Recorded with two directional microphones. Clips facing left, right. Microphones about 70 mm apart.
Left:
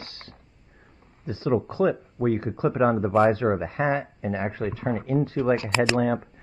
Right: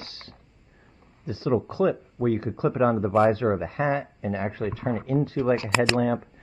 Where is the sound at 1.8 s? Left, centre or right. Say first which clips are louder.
Even; centre.